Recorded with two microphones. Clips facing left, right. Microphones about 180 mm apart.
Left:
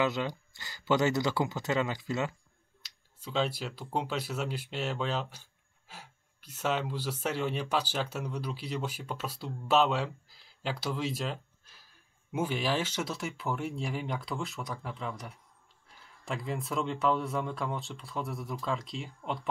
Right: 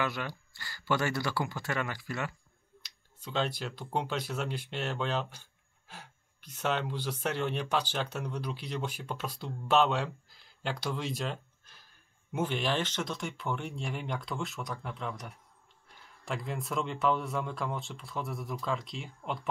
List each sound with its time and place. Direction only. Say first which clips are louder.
0.0 s speech: left 4 dB; 20° left (ahead or behind)
2.8 s speech: left 2 dB; 5° left (ahead or behind)